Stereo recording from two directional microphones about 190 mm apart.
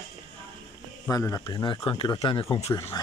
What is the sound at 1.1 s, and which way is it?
Speech, 20° left (ahead or behind).